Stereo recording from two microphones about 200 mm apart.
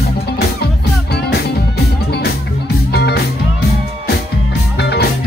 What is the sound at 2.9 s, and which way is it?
Music, 55° left (ahead or behind).